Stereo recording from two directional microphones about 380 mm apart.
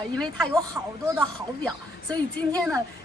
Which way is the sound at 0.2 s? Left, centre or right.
Centre.